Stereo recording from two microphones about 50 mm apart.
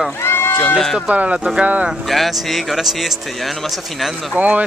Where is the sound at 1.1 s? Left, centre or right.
Right.